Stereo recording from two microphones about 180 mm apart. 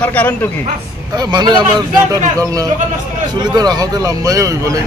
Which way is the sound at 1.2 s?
25° right (ahead or behind).